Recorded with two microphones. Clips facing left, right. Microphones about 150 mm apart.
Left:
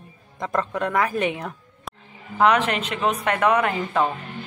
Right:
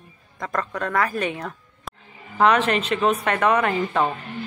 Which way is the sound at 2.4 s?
15° left (ahead or behind).